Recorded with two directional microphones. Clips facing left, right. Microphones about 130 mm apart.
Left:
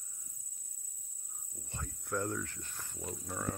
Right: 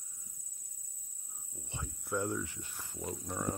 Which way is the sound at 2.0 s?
10° right (ahead or behind).